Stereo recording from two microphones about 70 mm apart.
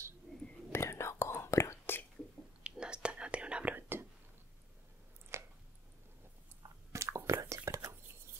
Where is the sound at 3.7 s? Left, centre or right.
Right.